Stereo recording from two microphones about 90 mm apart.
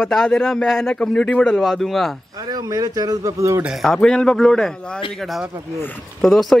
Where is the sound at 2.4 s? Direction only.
40° right (ahead or behind).